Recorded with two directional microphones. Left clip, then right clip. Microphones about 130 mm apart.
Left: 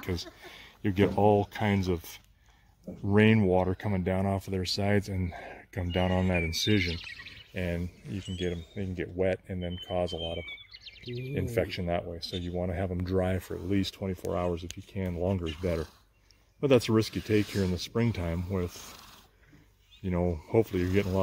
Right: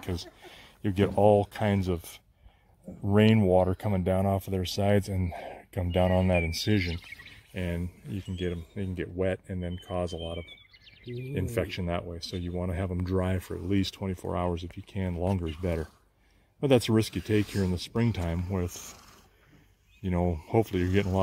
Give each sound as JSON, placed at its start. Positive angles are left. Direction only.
{"t": 0.0, "sound": "speech", "side_deg": -25}
{"t": 3.1, "sound": "speech", "side_deg": -50}
{"t": 10.8, "sound": "a sound", "side_deg": -35}
{"t": 11.3, "sound": "speech", "side_deg": -55}
{"t": 16.6, "sound": "speech", "side_deg": -70}
{"t": 18.7, "sound": "speech", "side_deg": -5}
{"t": 20.0, "sound": "speech", "side_deg": -55}